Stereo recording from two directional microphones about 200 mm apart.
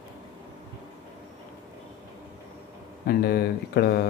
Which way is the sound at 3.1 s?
50° left (ahead or behind).